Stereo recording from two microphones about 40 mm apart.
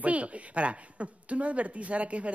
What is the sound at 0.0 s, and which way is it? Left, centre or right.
Speech, right.